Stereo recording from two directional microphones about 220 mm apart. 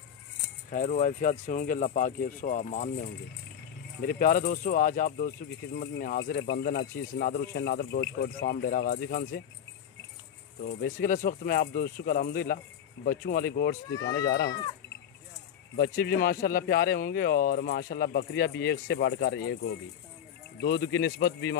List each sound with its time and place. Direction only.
0.7 s speech: 35° left (ahead or behind)
10.6 s speech: 50° left (ahead or behind)
13.9 s speech: 15° left (ahead or behind)
15.7 s speech: 45° left (ahead or behind)